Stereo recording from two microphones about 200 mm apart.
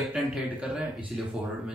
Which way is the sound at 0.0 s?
5° right (ahead or behind).